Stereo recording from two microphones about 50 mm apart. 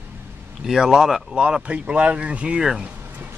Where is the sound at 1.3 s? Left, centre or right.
Right.